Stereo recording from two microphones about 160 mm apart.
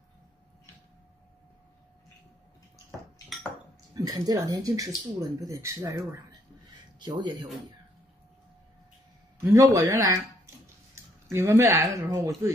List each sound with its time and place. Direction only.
3.9 s speech: 25° right (ahead or behind)
7.0 s speech: 25° right (ahead or behind)
9.4 s speech: 15° right (ahead or behind)